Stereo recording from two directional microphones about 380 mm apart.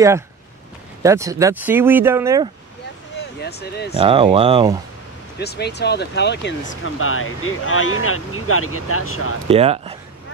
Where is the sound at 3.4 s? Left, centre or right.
Left.